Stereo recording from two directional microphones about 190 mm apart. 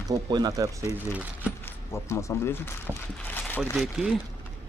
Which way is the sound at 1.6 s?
15° left (ahead or behind).